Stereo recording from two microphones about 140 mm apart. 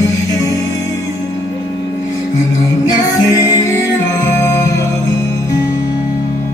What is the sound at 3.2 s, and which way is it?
Music, 20° left (ahead or behind).